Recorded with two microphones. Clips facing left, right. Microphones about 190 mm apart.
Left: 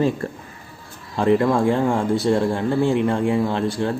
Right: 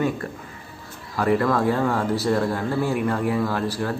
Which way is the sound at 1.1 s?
25° left (ahead or behind).